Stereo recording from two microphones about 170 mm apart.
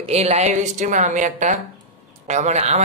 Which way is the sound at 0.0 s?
40° right (ahead or behind).